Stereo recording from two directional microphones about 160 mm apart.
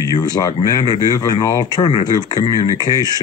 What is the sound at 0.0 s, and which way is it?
Speech, 25° left (ahead or behind).